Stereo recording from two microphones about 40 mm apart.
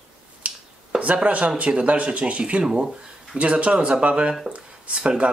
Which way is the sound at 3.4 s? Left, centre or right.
Right.